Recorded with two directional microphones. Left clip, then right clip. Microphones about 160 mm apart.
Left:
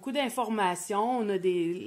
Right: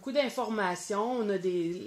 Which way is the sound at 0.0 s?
55° left (ahead or behind).